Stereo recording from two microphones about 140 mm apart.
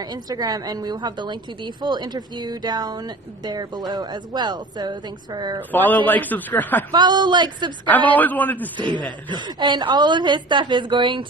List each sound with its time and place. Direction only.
0.0 s a woman's voice: 25° right (ahead or behind)
5.7 s speech: 10° left (ahead or behind)
6.9 s a woman's voice: 30° right (ahead or behind)
8.1 s speech: 10° left (ahead or behind)
8.7 s a woman's voice: 35° right (ahead or behind)